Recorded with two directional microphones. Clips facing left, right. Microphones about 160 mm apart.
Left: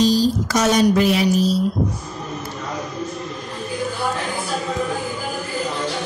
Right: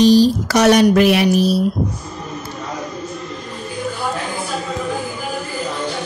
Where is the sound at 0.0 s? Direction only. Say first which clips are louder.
Right 6 dB; 70° right (ahead or behind).